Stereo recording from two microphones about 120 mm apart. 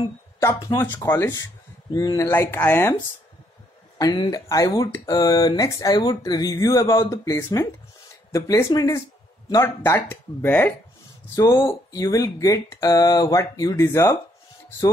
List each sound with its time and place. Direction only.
0.4 s speech: 25° left (ahead or behind)
2.2 s speech: 20° left (ahead or behind)
4.0 s speech: 35° left (ahead or behind); by 10.7 s 15° left (ahead or behind)
11.3 s speech: 30° left (ahead or behind)